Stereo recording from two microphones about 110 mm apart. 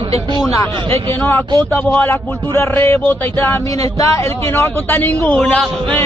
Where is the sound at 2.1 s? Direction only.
25° left (ahead or behind).